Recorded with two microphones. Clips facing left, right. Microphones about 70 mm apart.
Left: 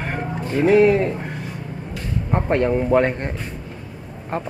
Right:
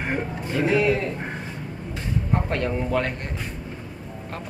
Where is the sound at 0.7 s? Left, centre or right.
Left.